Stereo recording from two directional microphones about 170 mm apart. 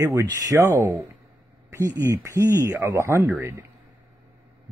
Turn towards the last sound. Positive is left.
turn(degrees=-15)  # may be behind; listen again after turning